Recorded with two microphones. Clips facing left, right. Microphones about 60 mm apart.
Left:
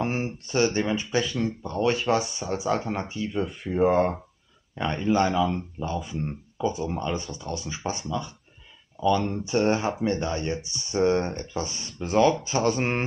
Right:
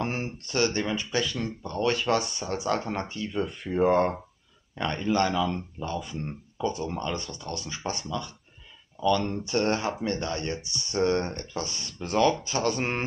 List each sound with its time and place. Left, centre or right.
0.0 s speech: centre